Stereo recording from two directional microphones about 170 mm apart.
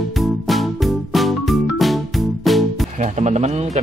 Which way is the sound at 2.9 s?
45° right (ahead or behind).